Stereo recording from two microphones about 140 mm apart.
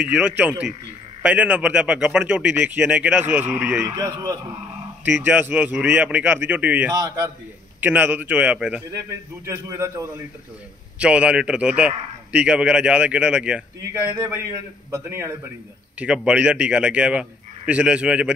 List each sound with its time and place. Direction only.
0.0 s a man's voice: 10° right (ahead or behind)
3.8 s a man's voice: 25° right (ahead or behind)
5.0 s a man's voice: 10° right (ahead or behind)
9.5 s a man's voice: 20° right (ahead or behind)
11.0 s a man's voice: 10° right (ahead or behind)
13.8 s a man's voice: 20° right (ahead or behind)
16.0 s a man's voice: 10° right (ahead or behind)